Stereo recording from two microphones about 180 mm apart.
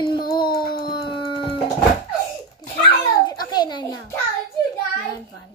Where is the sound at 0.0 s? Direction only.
25° left (ahead or behind).